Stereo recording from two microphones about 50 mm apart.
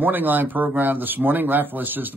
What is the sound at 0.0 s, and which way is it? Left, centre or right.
Speech, right.